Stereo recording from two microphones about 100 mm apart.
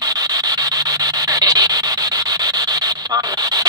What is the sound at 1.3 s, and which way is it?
Rub, 40° right (ahead or behind).